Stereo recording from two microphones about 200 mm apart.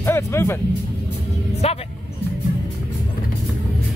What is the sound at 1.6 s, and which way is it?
Music, 30° left (ahead or behind).